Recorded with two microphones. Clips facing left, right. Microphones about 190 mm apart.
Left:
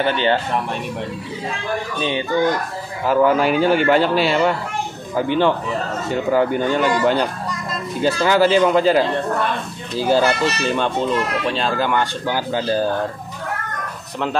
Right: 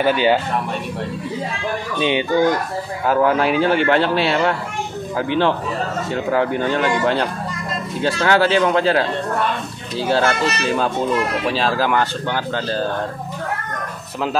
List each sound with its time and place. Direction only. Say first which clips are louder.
0.0 s speech: right 2 dB; 10° right (ahead or behind)
2.0 s speech: right 5 dB; 15° right (ahead or behind)
3.1 s a man's voice: left 1 dB; centre (ahead or behind)
12.5 s speech: left 3 dB; 10° left (ahead or behind)